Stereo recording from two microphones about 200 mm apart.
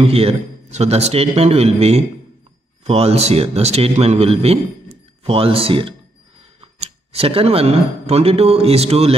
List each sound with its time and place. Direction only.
0.0 s a man's voice: 30° right (ahead or behind)